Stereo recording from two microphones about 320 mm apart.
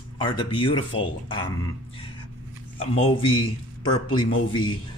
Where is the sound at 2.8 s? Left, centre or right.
Centre.